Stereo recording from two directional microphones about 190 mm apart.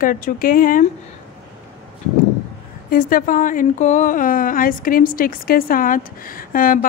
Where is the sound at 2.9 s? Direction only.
45° left (ahead or behind).